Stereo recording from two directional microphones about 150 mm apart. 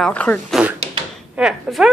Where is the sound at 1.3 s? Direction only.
5° right (ahead or behind).